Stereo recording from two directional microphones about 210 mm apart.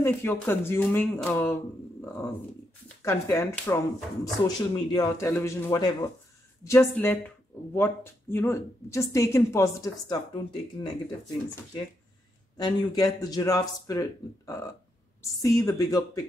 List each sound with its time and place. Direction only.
0.0 s speech: 10° left (ahead or behind)
12.5 s speech: 20° left (ahead or behind)